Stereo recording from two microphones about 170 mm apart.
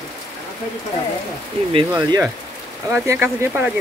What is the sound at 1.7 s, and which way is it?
Speech, 25° right (ahead or behind).